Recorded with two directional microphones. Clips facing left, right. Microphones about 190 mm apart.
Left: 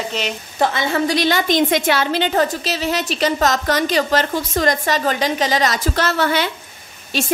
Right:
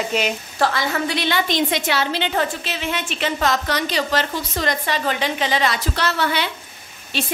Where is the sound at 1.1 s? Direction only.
40° left (ahead or behind).